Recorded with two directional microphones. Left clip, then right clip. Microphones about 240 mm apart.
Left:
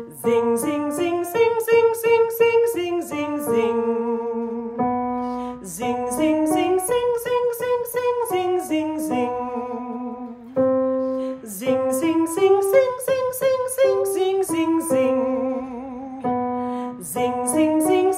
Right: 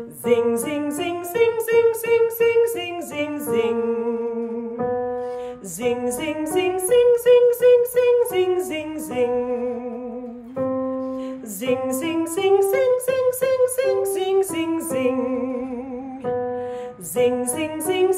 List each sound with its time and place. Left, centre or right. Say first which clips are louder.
0.2 s music: even; centre
5.9 s music: left 2 dB; centre
10.7 s music: left 5 dB; centre
17.2 s music: even; centre